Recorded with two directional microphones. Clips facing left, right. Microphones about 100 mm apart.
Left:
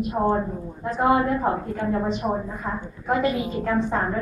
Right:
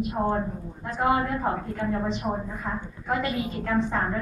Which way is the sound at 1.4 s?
15° left (ahead or behind).